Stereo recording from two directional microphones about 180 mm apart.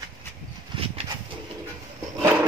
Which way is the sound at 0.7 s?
30° right (ahead or behind).